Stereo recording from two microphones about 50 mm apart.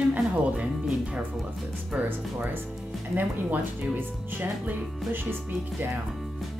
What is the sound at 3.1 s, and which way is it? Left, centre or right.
Speech, right.